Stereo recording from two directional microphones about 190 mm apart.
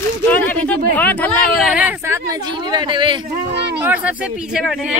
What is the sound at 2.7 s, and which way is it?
Speech, 25° right (ahead or behind).